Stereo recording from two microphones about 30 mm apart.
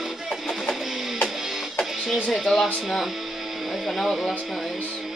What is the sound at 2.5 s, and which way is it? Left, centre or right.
Speech, centre.